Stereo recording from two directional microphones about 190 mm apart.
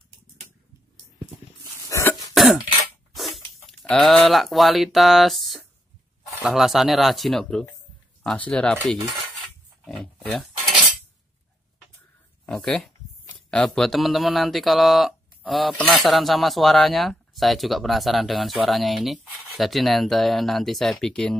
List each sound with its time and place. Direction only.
1.9 s cough: 15° left (ahead or behind)
2.3 s cough: centre (ahead or behind)
3.2 s speech: centre (ahead or behind)
9.8 s pig: 5° left (ahead or behind)
12.4 s speech: centre (ahead or behind)